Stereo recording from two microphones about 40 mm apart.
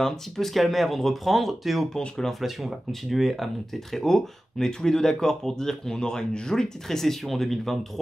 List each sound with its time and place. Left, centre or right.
0.0 s speech: centre
2.0 s speech: centre
2.9 s speech: centre
3.9 s speech: centre